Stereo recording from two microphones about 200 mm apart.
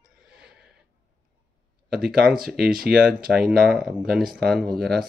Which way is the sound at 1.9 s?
50° right (ahead or behind).